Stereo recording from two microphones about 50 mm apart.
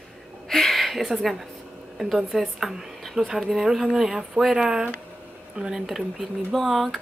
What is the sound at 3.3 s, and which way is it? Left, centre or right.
Speech, centre.